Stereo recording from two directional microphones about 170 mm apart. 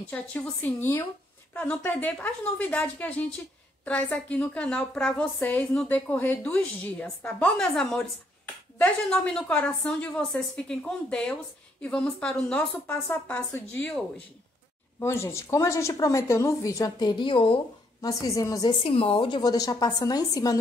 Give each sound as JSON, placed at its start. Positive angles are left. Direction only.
{"t": 0.1, "sound": "a woman's voice", "side_deg": 10}
{"t": 18.0, "sound": "a woman's voice", "side_deg": 20}
{"t": 18.8, "sound": "a woman's voice", "side_deg": 35}